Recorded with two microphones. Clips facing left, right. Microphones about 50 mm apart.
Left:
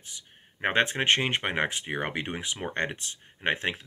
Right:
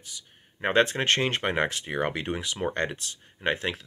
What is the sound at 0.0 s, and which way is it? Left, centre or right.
Speech, left.